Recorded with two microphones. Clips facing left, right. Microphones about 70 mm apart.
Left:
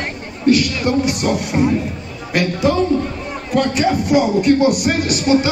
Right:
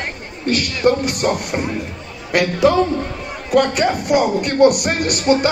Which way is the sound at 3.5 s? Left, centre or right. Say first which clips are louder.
Right 1 dB; right.